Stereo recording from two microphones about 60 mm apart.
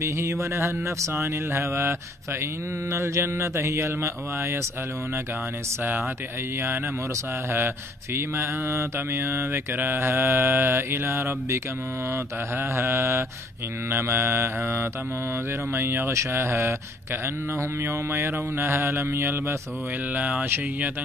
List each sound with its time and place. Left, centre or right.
0.0 s mantra: right
7.5 s mantra: right
15.7 s speech: right
16.1 s mantra: right
20.2 s speech: right
20.4 s speech: right